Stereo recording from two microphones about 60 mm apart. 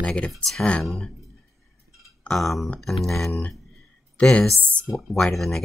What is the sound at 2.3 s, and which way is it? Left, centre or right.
Speech, centre.